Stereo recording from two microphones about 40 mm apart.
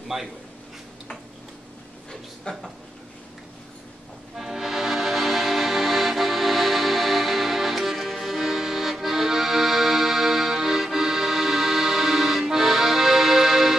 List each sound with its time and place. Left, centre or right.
0.1 s a man's voice: centre
2.5 s speech: left
4.4 s music: centre